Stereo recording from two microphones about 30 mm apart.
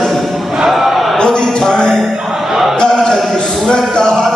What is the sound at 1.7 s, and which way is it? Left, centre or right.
Music, left.